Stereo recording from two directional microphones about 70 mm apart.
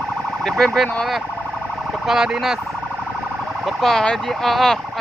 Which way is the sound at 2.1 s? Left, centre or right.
Centre.